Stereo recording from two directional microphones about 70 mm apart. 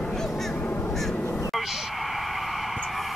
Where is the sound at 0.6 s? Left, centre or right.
Left.